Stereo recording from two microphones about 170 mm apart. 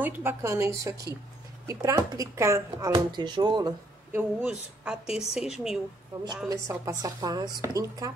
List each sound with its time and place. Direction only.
0.0 s a woman's voice: 15° right (ahead or behind)
4.1 s a woman's voice: 10° right (ahead or behind)
6.5 s speech: 20° right (ahead or behind)